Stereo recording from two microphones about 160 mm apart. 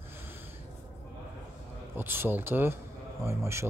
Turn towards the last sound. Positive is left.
turn(degrees=-15)  # may be behind; listen again after turning